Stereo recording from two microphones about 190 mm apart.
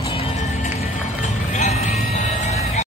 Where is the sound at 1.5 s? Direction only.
40° left (ahead or behind).